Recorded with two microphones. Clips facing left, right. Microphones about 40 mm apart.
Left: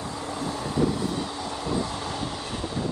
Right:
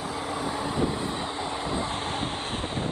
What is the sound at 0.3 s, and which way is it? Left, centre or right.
Vehicle, centre.